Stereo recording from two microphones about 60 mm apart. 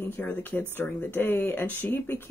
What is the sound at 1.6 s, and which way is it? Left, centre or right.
Speech, left.